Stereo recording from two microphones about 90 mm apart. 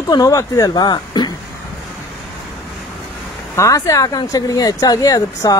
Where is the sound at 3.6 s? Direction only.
40° left (ahead or behind).